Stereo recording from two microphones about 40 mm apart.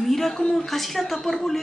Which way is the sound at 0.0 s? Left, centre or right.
Centre.